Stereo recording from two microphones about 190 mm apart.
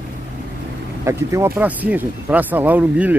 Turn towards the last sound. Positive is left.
turn(degrees=-10)  # may be behind; listen again after turning